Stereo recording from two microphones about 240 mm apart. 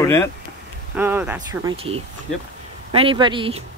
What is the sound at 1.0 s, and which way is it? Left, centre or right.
Speech, centre.